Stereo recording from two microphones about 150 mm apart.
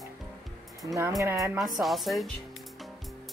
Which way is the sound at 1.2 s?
20° right (ahead or behind).